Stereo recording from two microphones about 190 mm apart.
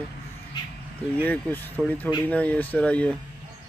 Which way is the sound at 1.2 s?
10° left (ahead or behind).